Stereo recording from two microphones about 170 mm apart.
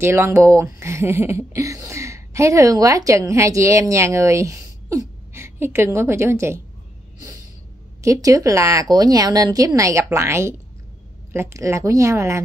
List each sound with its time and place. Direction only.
0.0 s speech: 15° right (ahead or behind)
8.0 s speech: 20° right (ahead or behind)